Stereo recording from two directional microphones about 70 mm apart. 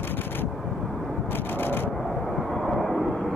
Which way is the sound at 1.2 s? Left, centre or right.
Left.